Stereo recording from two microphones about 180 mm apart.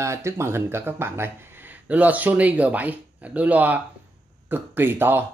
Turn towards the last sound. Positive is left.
turn(degrees=-10)  # may be behind; listen again after turning